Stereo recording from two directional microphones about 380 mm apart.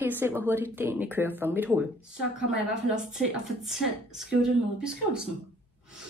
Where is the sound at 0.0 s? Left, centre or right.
Centre.